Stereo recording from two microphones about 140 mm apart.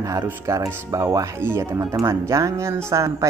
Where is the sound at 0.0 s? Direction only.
25° right (ahead or behind).